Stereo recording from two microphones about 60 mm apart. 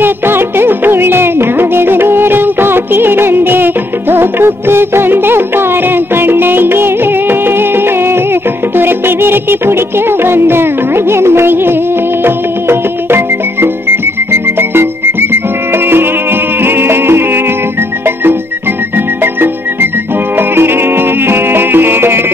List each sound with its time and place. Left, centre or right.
0.0 s music of bollywood: right
12.3 s music: right
20.3 s music: right